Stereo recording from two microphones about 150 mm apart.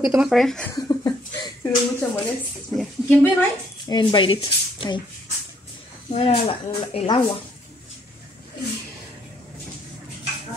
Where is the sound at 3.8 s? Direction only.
30° left (ahead or behind).